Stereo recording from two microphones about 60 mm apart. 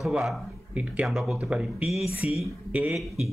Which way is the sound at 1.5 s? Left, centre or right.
Centre.